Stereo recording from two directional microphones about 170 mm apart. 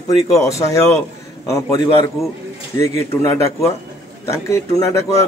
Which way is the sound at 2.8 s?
15° left (ahead or behind).